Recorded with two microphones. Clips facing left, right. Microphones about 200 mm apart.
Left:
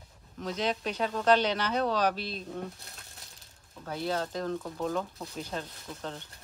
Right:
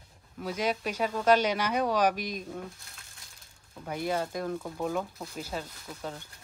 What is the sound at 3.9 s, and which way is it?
Speech, 10° right (ahead or behind).